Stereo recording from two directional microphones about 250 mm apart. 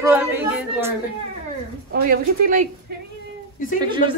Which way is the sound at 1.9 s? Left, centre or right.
Right.